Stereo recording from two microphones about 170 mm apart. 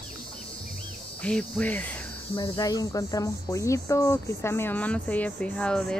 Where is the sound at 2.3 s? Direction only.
25° left (ahead or behind).